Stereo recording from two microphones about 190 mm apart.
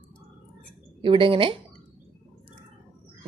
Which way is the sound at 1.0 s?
30° right (ahead or behind).